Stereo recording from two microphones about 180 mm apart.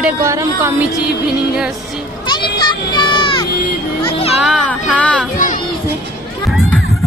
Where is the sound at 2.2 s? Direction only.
25° left (ahead or behind).